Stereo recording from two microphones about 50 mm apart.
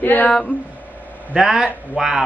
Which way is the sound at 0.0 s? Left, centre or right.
Left.